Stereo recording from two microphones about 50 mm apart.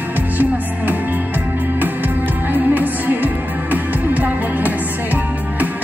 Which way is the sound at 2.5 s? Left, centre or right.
Right.